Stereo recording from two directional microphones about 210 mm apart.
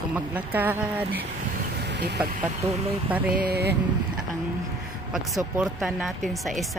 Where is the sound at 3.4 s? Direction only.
50° right (ahead or behind).